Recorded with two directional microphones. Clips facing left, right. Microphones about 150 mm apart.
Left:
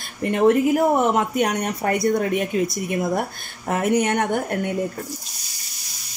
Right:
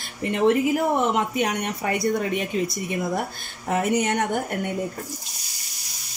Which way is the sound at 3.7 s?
60° left (ahead or behind).